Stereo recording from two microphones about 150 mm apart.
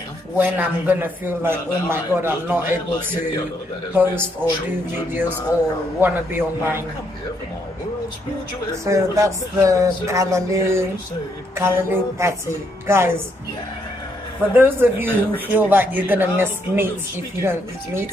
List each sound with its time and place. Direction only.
0.4 s a man's voice: 10° right (ahead or behind)
3.9 s a man's voice: 15° right (ahead or behind)
5.9 s a man's voice: 15° right (ahead or behind)
8.8 s a man's voice: 20° right (ahead or behind)
14.5 s a man's voice: 10° right (ahead or behind)